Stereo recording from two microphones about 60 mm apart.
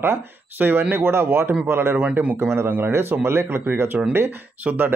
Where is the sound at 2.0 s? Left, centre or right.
Right.